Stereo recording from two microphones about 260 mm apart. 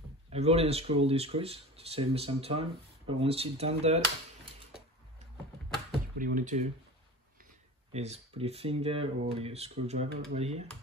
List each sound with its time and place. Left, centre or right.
0.3 s speech: right
6.1 s speech: right
7.9 s speech: right